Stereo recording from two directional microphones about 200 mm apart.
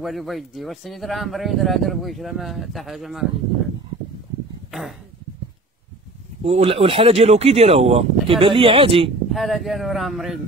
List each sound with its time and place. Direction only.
0.0 s speech: centre (ahead or behind)
4.6 s speech: centre (ahead or behind)
6.4 s speech: 30° right (ahead or behind)
9.3 s speech: centre (ahead or behind)